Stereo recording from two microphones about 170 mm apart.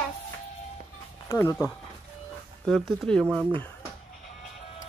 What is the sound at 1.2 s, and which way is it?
Speech, 15° left (ahead or behind).